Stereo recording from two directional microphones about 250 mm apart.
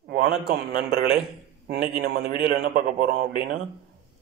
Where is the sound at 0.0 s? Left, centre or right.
Right.